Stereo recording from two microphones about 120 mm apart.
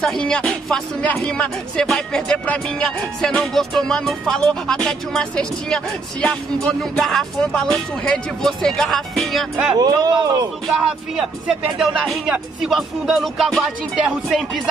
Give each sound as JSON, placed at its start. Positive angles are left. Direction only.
{"t": 0.0, "sound": "speech", "side_deg": 5}
{"t": 9.8, "sound": "speech", "side_deg": -35}
{"t": 10.7, "sound": "speech", "side_deg": -5}